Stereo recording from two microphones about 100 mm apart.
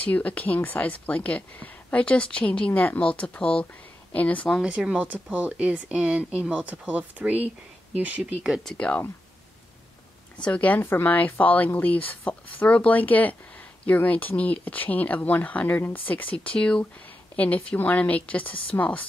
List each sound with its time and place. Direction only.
0.0 s a woman's voice: 15° left (ahead or behind)
4.5 s speech: 5° right (ahead or behind)
8.6 s a woman's voice: 10° left (ahead or behind)
10.3 s a woman's voice: 15° left (ahead or behind)